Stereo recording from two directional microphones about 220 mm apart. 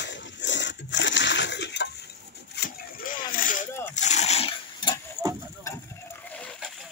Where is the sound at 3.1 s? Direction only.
40° left (ahead or behind).